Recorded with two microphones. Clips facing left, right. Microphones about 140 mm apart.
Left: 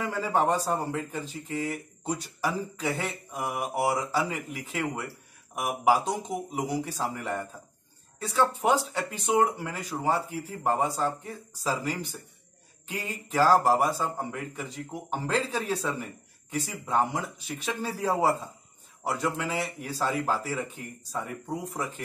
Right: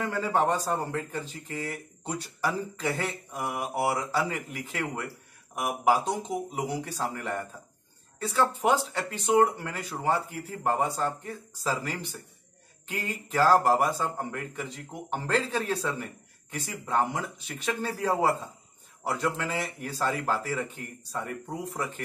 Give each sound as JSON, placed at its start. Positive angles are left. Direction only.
{"t": 0.0, "sound": "speech", "side_deg": 5}